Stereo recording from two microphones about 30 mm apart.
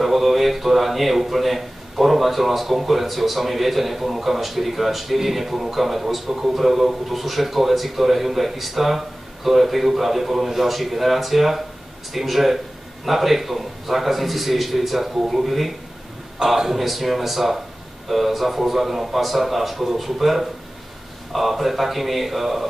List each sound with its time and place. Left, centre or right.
0.0 s a man's voice: centre